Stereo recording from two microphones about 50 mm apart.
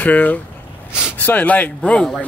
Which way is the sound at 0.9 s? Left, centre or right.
Centre.